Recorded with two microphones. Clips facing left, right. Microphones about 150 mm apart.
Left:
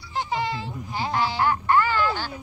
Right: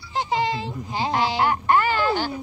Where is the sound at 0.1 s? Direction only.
90° right.